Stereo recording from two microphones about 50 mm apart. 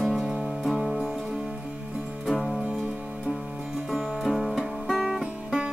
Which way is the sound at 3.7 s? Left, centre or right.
Centre.